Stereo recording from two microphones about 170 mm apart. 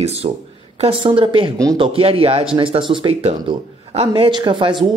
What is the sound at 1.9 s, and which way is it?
Speech, 35° right (ahead or behind).